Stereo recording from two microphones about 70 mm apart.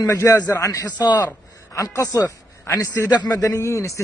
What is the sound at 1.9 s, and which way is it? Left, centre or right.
Speech, left.